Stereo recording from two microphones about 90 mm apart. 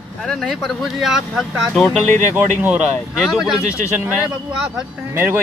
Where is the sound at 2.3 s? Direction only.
20° right (ahead or behind).